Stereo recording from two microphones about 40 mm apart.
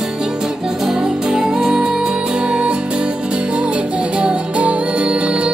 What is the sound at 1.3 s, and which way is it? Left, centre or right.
Music, centre.